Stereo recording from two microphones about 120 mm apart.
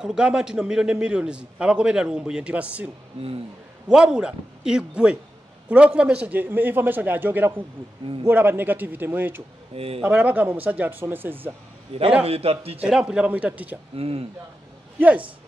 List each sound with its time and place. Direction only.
0.0 s a man's voice: 5° right (ahead or behind)
3.9 s a man's voice: 5° right (ahead or behind)
9.8 s speech: 55° right (ahead or behind)
10.0 s a man's voice: 15° right (ahead or behind)
11.9 s a man's voice: 55° right (ahead or behind)
12.8 s a man's voice: 5° right (ahead or behind)
13.9 s speech: 50° right (ahead or behind)
15.0 s a man's voice: 10° right (ahead or behind)